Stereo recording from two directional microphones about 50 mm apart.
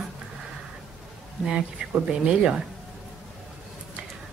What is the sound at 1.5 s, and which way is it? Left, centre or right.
Speech, centre.